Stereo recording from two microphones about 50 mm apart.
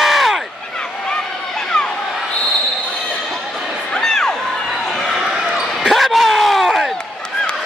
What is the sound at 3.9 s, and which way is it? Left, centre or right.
Crowd, centre.